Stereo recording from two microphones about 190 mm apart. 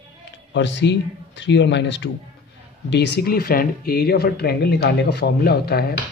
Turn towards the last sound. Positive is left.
turn(degrees=55)  # may be behind; listen again after turning